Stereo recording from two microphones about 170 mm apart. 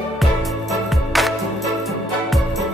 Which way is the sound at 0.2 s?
Centre (ahead or behind).